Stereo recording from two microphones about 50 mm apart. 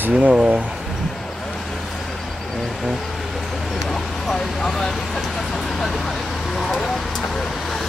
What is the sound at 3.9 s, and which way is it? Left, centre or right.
Vehicle, centre.